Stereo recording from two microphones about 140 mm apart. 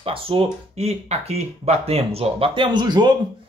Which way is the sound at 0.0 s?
40° right (ahead or behind).